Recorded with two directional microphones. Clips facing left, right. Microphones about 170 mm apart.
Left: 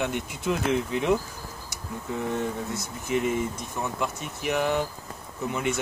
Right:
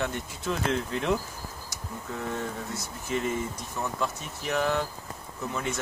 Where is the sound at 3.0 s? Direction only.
15° left (ahead or behind).